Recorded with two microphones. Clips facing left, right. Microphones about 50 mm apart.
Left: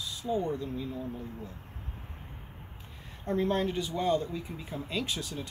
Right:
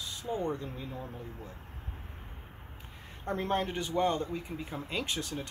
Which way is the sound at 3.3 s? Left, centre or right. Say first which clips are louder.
Left 3 dB; right.